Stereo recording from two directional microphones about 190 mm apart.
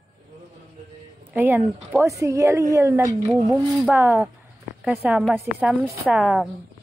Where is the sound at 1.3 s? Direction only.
10° right (ahead or behind).